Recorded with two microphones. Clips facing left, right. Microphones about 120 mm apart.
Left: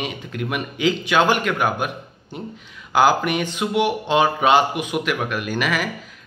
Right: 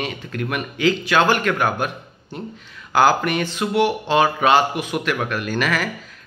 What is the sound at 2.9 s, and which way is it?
Speech, 15° left (ahead or behind).